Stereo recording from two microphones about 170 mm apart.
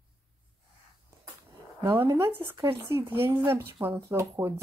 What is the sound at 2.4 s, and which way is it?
Speech, 25° right (ahead or behind).